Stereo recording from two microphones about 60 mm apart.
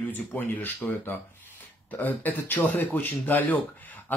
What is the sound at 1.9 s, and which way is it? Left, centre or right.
Speech, left.